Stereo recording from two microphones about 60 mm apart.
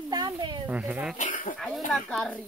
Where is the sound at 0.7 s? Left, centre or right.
Centre.